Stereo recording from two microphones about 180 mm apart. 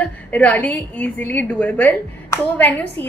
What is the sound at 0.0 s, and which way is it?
A woman's voice, 10° left (ahead or behind).